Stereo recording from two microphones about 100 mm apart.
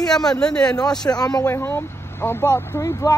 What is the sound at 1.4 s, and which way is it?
Speech, 20° left (ahead or behind).